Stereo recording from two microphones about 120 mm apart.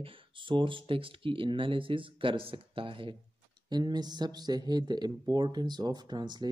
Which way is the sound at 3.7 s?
35° right (ahead or behind).